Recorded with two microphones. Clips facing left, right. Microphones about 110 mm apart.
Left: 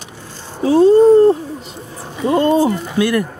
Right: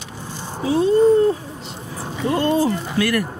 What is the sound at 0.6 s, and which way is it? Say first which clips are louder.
Speech: left 6 dB; 40° left (ahead or behind).